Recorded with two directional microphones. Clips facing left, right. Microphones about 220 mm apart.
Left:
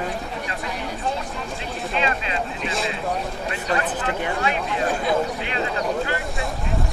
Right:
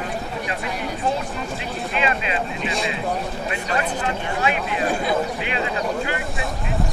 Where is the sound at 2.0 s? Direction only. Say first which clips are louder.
Right 2 dB; 15° right (ahead or behind).